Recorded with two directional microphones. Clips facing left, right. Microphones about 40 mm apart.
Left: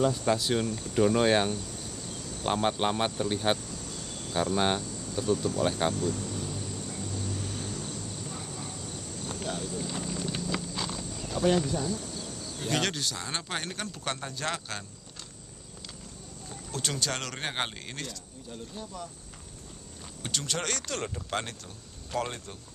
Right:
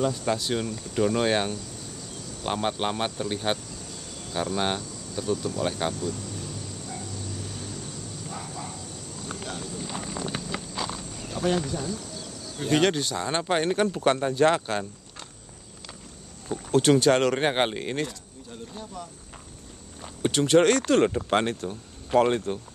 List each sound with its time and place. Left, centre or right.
0.0 s speech: centre
9.4 s speech: centre
10.0 s clip-clop: right
10.5 s clip-clop: centre
11.4 s speech: centre; by 15.2 s right
16.4 s speech: right
18.5 s speech: centre
20.0 s speech: right